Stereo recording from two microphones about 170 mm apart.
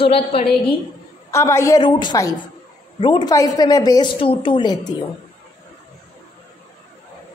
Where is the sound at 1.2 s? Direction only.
15° left (ahead or behind).